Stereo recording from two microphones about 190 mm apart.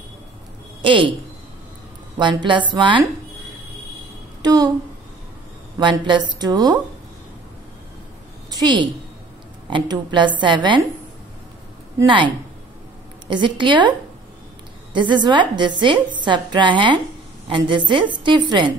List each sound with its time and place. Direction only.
0.8 s a woman's voice: 25° right (ahead or behind)
2.1 s a woman's voice: 25° right (ahead or behind)
4.4 s a woman's voice: 20° right (ahead or behind)
5.8 s a woman's voice: 25° right (ahead or behind)
8.5 s a sound: 20° right (ahead or behind)
9.7 s a woman's voice: 25° right (ahead or behind)
12.0 s a woman's voice: 25° right (ahead or behind)
13.3 s a woman's voice: 25° right (ahead or behind)